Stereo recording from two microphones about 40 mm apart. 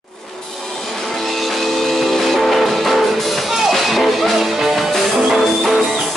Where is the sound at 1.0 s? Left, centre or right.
Centre.